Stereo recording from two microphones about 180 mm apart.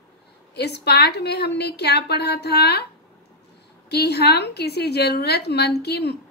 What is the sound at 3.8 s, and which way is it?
A woman's voice, 65° left (ahead or behind).